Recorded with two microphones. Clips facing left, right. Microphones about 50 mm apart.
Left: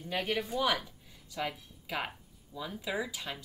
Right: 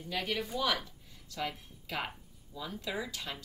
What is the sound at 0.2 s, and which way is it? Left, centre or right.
Speech, centre.